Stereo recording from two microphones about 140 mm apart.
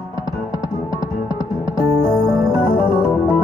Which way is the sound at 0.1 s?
25° left (ahead or behind).